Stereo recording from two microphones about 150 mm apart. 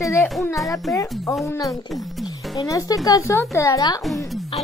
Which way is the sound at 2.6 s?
25° left (ahead or behind).